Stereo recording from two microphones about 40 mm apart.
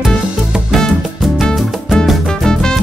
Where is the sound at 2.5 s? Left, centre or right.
Centre.